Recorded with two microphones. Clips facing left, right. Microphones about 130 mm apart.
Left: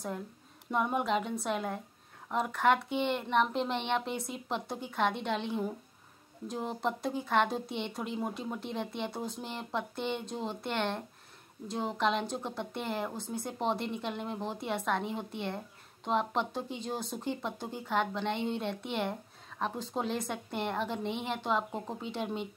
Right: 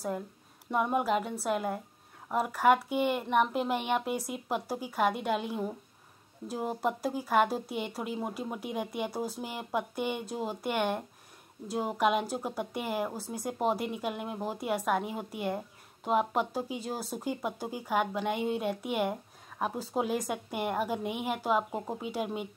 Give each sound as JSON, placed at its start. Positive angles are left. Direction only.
{"t": 0.7, "sound": "a woman's voice", "side_deg": -5}